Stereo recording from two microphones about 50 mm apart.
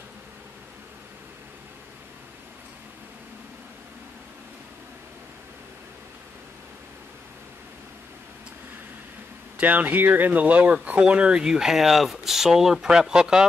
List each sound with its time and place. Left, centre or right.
9.6 s speech: right
11.0 s speech: centre